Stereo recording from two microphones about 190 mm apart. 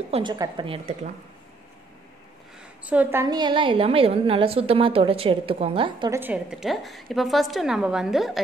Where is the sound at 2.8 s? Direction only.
10° right (ahead or behind); by 6.1 s 25° right (ahead or behind).